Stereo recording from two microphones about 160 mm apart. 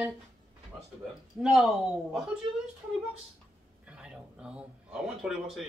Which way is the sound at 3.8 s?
5° right (ahead or behind).